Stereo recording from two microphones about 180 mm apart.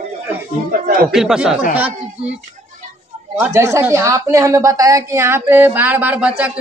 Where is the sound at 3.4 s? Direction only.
15° right (ahead or behind).